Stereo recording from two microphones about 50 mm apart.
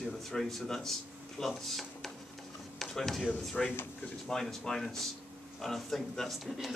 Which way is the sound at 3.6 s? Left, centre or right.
Centre.